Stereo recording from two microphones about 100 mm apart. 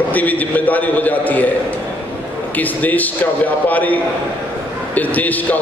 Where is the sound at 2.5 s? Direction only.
15° left (ahead or behind).